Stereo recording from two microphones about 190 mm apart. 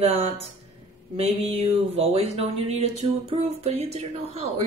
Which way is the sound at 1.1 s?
30° right (ahead or behind).